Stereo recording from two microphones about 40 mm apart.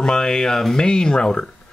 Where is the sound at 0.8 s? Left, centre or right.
Centre.